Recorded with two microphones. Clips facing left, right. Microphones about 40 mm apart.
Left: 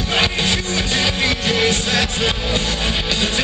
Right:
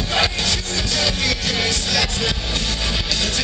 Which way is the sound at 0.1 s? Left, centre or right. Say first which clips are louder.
Left 3 dB; left.